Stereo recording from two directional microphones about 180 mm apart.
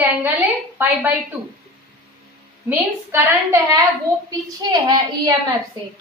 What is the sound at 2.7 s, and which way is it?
A woman's voice, 15° right (ahead or behind).